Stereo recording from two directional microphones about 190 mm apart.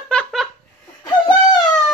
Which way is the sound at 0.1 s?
Centre (ahead or behind).